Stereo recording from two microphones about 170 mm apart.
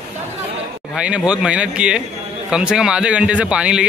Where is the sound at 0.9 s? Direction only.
5° right (ahead or behind).